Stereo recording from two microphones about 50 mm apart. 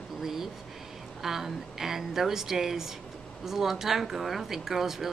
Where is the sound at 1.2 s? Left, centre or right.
Centre.